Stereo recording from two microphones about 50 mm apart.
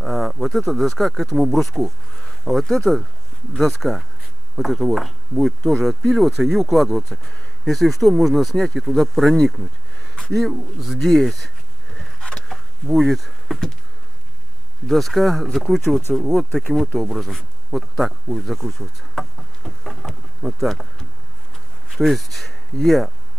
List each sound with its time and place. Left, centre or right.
0.0 s speech: centre
12.2 s a sound: centre
12.4 s a sound: centre
14.9 s speech: centre
18.6 s bee: centre
21.8 s speech: centre